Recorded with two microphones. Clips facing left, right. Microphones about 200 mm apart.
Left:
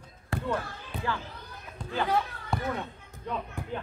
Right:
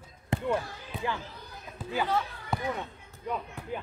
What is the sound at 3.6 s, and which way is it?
Speech, 15° left (ahead or behind).